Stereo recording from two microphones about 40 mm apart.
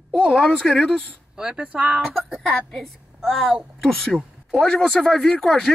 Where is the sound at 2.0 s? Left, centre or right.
Centre.